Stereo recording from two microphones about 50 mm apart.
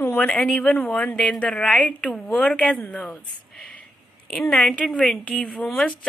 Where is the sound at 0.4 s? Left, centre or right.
Left.